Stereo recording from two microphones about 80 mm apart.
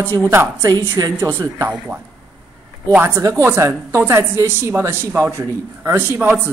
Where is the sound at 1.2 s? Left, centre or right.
Right.